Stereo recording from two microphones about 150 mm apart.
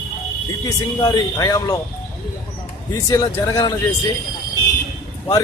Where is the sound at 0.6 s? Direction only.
25° left (ahead or behind).